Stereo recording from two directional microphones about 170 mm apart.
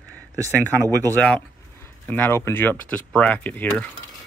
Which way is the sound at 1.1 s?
5° left (ahead or behind).